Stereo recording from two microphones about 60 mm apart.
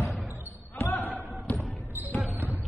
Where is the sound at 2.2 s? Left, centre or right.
Right.